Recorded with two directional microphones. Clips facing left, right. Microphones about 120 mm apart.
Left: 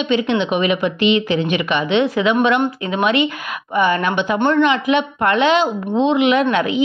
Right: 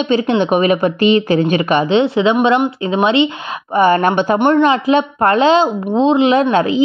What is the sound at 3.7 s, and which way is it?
A woman's voice, 40° right (ahead or behind).